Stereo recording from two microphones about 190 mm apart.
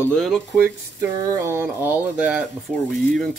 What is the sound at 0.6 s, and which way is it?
Speech, 10° right (ahead or behind).